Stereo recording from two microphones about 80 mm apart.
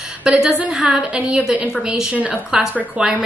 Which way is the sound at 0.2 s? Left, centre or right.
Centre.